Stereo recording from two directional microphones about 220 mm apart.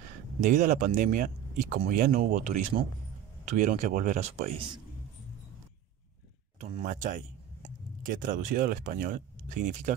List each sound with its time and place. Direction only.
0.4 s speech: 35° right (ahead or behind)
6.8 s speech: 40° right (ahead or behind)